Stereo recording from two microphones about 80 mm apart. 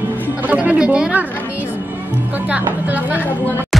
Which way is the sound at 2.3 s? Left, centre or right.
Centre.